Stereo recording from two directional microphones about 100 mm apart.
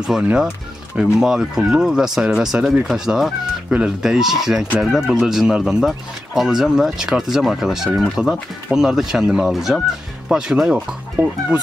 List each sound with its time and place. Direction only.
0.0 s speech: 5° right (ahead or behind)
11.2 s speech: 20° right (ahead or behind)